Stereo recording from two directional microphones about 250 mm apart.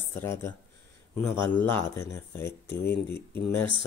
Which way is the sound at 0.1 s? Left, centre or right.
Centre.